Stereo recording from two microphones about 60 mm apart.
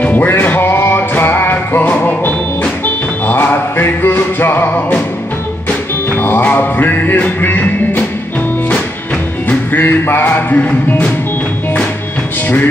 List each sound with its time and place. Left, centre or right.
0.0 s music: left
6.0 s music: left
9.5 s music: left